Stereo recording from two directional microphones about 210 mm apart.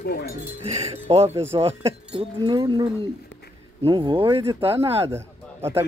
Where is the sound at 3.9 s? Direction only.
25° right (ahead or behind).